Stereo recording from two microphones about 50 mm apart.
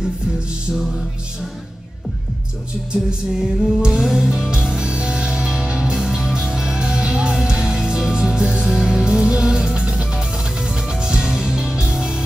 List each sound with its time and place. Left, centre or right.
0.7 s music: centre
2.9 s music: right
3.3 s music: centre